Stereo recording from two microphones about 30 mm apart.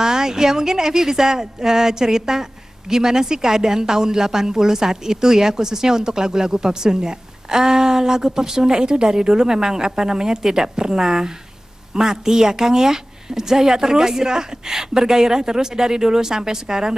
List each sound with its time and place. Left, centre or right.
0.0 s speech: right